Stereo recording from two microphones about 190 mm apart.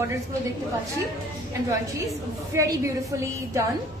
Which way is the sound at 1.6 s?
15° right (ahead or behind).